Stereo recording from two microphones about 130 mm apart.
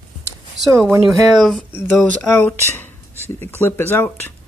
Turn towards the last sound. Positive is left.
turn(degrees=15)  # may be behind; listen again after turning